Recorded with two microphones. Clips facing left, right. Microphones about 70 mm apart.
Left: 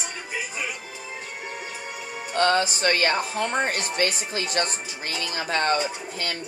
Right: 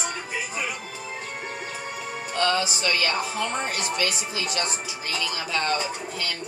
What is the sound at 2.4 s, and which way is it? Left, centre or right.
Speech, left.